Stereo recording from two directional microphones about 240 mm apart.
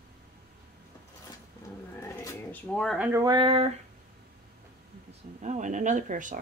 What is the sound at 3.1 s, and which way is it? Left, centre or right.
Speech, centre.